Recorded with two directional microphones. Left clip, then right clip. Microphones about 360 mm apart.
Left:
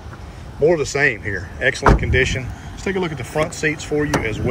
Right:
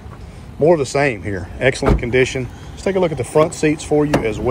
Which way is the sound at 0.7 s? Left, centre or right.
Centre.